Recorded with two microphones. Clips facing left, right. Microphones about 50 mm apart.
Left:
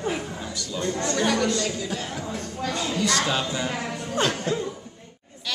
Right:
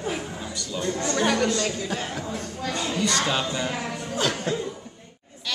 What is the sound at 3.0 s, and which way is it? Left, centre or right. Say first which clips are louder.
Speech: even; centre.